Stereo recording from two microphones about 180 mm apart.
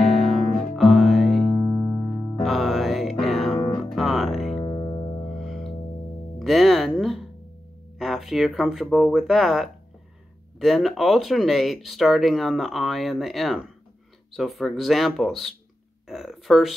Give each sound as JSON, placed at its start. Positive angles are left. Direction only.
{"t": 0.0, "sound": "music", "side_deg": 0}
{"t": 4.6, "sound": "music", "side_deg": 20}
{"t": 5.3, "sound": "music", "side_deg": 0}
{"t": 6.4, "sound": "a sound", "side_deg": 0}
{"t": 8.0, "sound": "speech", "side_deg": 0}